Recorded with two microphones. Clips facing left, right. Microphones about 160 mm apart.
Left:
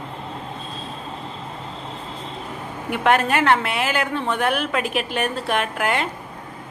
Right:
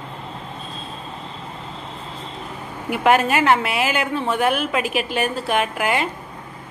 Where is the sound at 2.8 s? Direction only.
5° right (ahead or behind).